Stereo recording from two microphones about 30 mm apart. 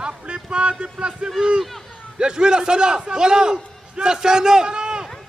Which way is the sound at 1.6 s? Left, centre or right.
Centre.